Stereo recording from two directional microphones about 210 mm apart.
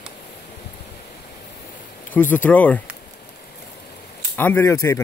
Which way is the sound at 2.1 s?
10° left (ahead or behind).